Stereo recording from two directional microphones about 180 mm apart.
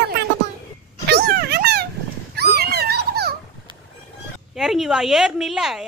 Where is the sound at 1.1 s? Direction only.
60° right (ahead or behind).